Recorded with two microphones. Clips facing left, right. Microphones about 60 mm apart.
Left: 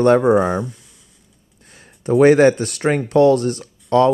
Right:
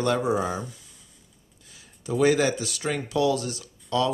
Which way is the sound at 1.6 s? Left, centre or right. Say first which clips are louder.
Left 6 dB; left.